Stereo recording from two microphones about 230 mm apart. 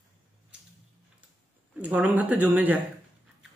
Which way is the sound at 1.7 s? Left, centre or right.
Centre.